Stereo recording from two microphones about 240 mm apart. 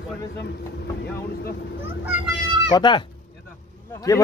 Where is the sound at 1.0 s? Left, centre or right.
Left.